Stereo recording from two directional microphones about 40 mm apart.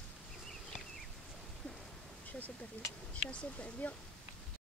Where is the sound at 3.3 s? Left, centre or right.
Left.